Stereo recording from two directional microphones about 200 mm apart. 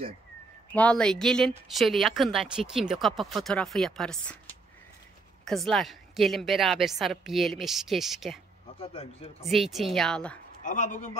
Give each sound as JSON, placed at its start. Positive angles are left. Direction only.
{"t": 0.7, "sound": "a woman's voice", "side_deg": 5}
{"t": 5.4, "sound": "a woman's voice", "side_deg": 0}
{"t": 8.7, "sound": "speech", "side_deg": 30}
{"t": 9.5, "sound": "a woman's voice", "side_deg": 0}
{"t": 10.6, "sound": "a man's voice", "side_deg": 40}